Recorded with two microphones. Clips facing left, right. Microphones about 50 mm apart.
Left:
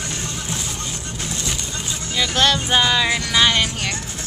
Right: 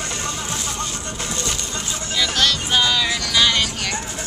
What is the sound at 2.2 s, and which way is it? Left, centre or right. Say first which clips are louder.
Music: left 2 dB; left.